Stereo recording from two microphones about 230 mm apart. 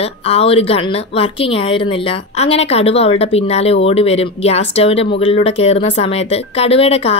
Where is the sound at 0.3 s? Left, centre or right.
Left.